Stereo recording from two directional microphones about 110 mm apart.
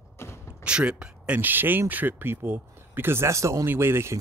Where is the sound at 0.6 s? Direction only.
10° right (ahead or behind).